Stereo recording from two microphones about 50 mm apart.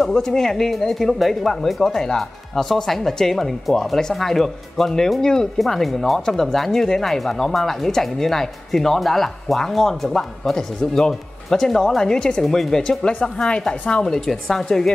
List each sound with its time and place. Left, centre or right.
0.0 s speech: centre